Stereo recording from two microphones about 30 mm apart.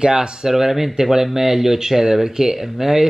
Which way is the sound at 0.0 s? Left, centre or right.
Right.